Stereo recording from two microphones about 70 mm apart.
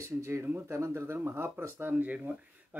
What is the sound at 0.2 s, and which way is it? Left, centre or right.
Speech, right.